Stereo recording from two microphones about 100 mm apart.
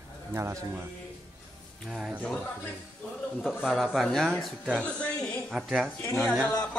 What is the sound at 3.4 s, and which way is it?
Speech, 5° right (ahead or behind).